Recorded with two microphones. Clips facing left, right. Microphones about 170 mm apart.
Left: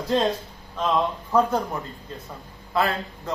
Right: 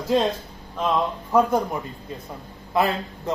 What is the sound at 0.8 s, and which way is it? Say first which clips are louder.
Speech: even; 5° right (ahead or behind).